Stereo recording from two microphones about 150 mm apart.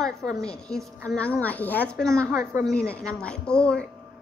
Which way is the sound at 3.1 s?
5° left (ahead or behind).